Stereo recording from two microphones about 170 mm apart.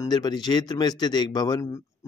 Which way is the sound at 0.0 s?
25° left (ahead or behind).